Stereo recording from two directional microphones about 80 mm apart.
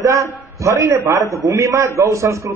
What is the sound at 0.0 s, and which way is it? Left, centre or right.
A man's voice, right.